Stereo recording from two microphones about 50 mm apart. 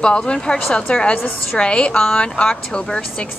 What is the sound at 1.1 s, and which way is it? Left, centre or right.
Speech, left.